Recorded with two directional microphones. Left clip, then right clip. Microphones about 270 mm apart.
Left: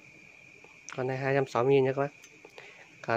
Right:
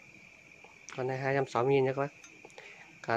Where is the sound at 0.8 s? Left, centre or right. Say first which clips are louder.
Left 2 dB; centre.